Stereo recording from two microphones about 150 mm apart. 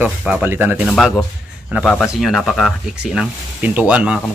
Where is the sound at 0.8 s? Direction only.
Centre (ahead or behind).